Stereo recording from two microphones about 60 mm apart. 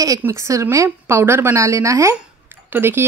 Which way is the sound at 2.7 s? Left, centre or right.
Right.